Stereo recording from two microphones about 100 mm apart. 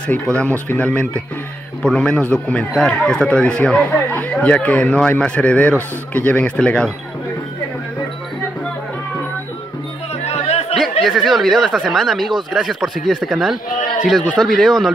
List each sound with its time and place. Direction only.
0.4 s speech: 10° left (ahead or behind)
10.2 s music: 90° left
10.8 s speech: centre (ahead or behind)
14.2 s speech: 10° left (ahead or behind)